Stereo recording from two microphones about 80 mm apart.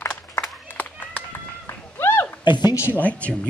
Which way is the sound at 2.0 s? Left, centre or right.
Left.